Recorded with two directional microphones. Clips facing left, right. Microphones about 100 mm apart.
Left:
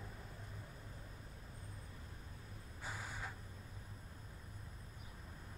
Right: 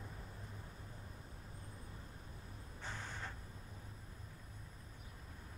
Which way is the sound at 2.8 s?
10° left (ahead or behind).